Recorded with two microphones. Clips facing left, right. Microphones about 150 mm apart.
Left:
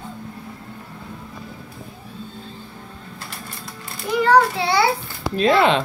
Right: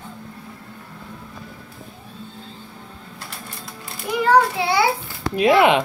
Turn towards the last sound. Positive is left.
turn(degrees=-15)  # may be behind; listen again after turning